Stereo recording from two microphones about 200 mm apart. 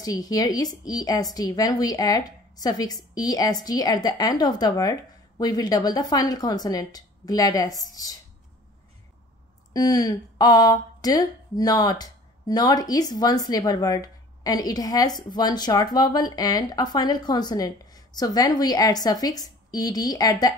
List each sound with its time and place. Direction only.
0.0 s speech: 20° left (ahead or behind)
9.8 s speech: 20° left (ahead or behind)